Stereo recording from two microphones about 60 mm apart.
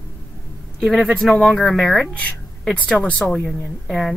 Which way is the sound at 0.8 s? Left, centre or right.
Centre.